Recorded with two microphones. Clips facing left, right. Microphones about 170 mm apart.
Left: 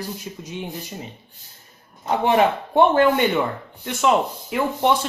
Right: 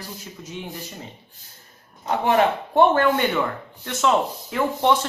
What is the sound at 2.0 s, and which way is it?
Speech, 15° left (ahead or behind).